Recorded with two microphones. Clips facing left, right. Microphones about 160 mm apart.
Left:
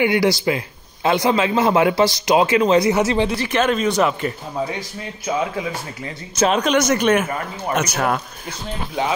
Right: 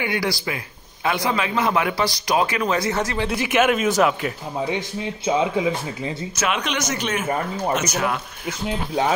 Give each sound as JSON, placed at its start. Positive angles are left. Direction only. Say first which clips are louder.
{"t": 0.0, "sound": "speech", "louder": "left 7 dB", "side_deg": 25}
{"t": 3.3, "sound": "speech", "louder": "even", "side_deg": -10}
{"t": 4.6, "sound": "speech", "louder": "right 3 dB", "side_deg": -20}
{"t": 6.3, "sound": "speech", "louder": "left 9 dB", "side_deg": 35}
{"t": 6.8, "sound": "speech", "louder": "left 8 dB", "side_deg": 55}